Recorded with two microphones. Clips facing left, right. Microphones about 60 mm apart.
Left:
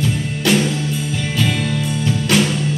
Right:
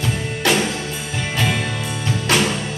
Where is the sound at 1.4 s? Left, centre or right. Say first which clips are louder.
Left 1 dB; centre.